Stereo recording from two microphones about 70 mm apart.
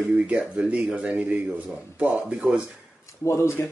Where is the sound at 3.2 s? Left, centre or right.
Left.